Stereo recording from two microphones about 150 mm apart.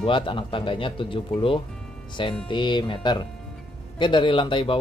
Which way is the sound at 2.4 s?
30° left (ahead or behind).